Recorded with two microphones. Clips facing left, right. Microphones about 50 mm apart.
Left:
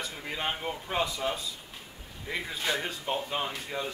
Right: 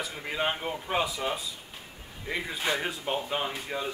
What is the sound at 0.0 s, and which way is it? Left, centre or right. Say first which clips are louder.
Speech: right 3 dB; centre.